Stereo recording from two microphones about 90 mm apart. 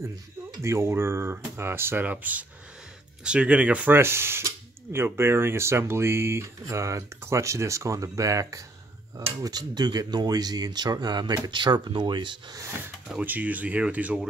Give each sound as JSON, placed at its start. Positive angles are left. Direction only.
{"t": 0.6, "sound": "speech", "side_deg": -30}
{"t": 3.9, "sound": "speech", "side_deg": -25}
{"t": 13.2, "sound": "speech", "side_deg": -20}